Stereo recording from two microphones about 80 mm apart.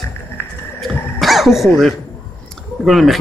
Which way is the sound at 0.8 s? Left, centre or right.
Centre.